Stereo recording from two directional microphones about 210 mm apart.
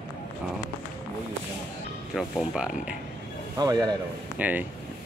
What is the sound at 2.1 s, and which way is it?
Speech, 5° right (ahead or behind).